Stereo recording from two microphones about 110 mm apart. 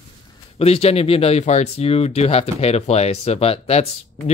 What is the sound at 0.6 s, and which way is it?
Speech, 65° left (ahead or behind).